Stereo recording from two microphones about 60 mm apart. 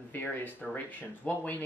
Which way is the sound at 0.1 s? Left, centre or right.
Left.